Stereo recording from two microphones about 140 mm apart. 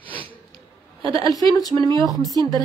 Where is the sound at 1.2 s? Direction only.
25° left (ahead or behind).